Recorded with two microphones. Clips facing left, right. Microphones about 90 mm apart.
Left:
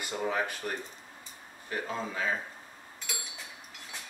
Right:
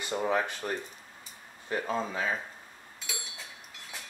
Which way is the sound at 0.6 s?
25° right (ahead or behind).